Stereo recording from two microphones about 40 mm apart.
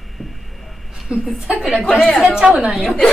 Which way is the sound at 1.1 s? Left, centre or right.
Right.